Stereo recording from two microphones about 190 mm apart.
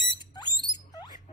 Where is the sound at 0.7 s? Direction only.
45° left (ahead or behind).